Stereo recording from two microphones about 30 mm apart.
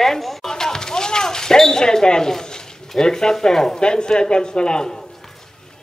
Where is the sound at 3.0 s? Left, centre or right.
Left.